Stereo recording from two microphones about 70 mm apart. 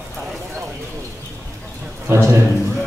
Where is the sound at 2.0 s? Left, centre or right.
Right.